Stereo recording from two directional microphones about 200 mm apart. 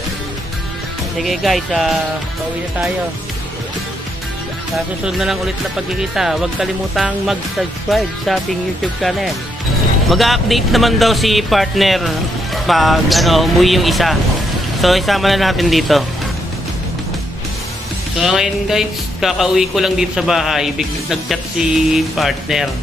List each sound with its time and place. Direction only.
1.2 s speech: centre (ahead or behind)
5.0 s speech: centre (ahead or behind)
10.0 s speech: centre (ahead or behind)
18.1 s speech: centre (ahead or behind)